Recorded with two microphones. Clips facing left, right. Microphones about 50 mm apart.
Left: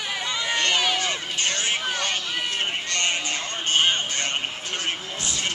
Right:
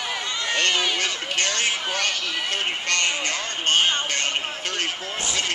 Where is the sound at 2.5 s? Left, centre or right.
Right.